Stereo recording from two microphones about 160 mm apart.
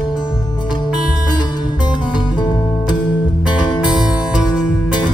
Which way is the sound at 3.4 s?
25° left (ahead or behind).